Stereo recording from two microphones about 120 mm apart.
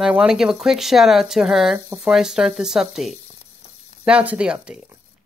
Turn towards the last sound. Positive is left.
turn(degrees=-10)  # may be behind; listen again after turning